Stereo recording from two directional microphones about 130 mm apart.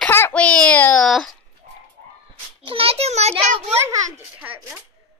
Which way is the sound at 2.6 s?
45° right (ahead or behind).